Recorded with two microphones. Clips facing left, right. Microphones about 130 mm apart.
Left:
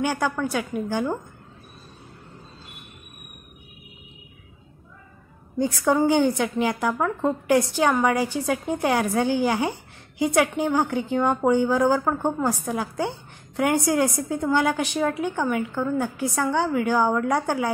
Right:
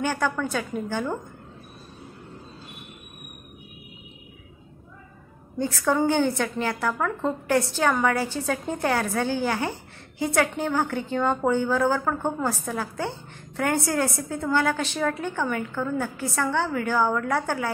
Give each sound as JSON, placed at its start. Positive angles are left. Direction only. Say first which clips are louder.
{"t": 0.0, "sound": "a woman's voice", "louder": "left 1 dB", "side_deg": 15}
{"t": 5.6, "sound": "a woman's voice", "louder": "left 3 dB", "side_deg": 15}